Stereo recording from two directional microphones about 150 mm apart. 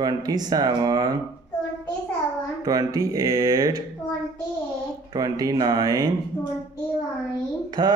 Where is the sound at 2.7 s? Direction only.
25° right (ahead or behind).